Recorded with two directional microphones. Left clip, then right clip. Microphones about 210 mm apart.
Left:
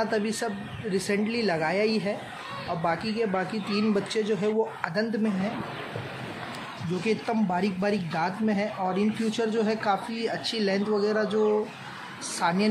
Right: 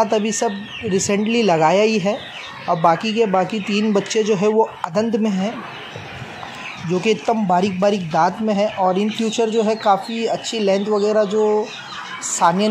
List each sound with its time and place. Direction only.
0.0 s speech: 30° right (ahead or behind)
7.1 s speech: 25° right (ahead or behind)